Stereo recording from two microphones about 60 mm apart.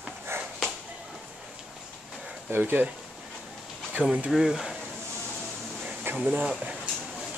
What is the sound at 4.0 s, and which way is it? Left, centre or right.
Speech, left.